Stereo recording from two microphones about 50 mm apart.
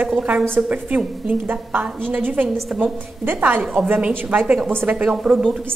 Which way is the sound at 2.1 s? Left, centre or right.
Right.